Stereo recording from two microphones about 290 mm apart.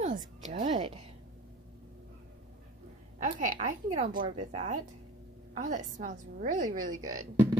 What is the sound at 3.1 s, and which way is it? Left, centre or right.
Speech, right.